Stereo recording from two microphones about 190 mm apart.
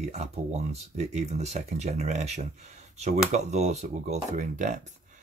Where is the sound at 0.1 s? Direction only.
35° right (ahead or behind).